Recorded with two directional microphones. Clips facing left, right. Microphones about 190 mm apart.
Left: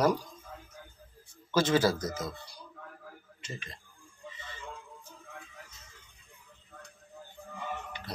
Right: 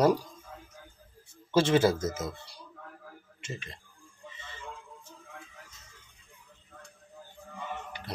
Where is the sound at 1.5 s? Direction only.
25° right (ahead or behind).